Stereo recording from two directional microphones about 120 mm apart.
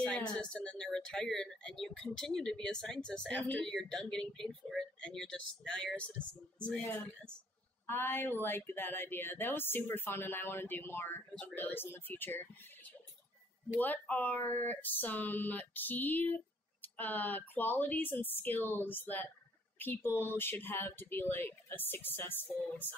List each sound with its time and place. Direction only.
0.0 s speech: 5° left (ahead or behind)
13.7 s speech: 15° left (ahead or behind)